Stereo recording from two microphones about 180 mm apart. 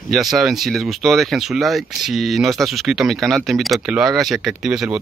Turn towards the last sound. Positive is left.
turn(degrees=-5)  # may be behind; listen again after turning